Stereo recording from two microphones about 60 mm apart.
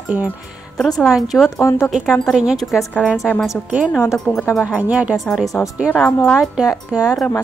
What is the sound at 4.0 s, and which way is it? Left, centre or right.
Speech, left.